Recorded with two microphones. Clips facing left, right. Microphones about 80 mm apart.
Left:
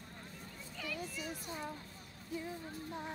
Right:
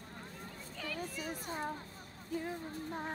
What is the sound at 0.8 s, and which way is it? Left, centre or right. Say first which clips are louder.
Speech: right 2 dB; right.